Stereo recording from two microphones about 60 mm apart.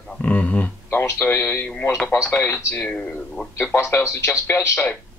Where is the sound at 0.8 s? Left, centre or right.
Left.